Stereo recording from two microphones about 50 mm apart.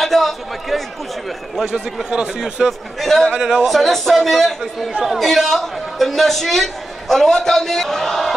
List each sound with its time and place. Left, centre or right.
0.0 s a man's voice: centre
2.0 s speech: centre
3.0 s a man's voice: centre
3.3 s speech: centre
3.6 s a man's voice: centre